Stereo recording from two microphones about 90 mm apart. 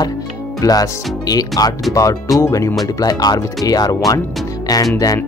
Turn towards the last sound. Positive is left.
turn(degrees=40)  # may be behind; listen again after turning